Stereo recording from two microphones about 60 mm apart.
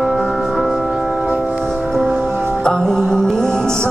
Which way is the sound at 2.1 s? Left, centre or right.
Right.